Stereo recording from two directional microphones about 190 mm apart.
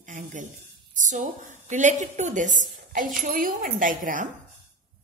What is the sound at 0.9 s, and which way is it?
A woman's voice, 40° right (ahead or behind).